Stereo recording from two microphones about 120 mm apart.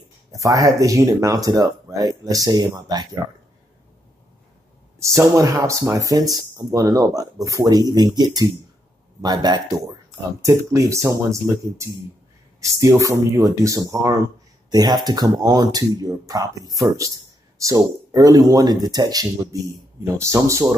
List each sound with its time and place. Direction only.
0.3 s speech: 30° right (ahead or behind)
5.0 s speech: 25° right (ahead or behind)